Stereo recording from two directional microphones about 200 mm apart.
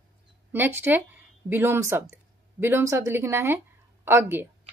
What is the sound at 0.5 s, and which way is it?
A woman's voice, 10° right (ahead or behind).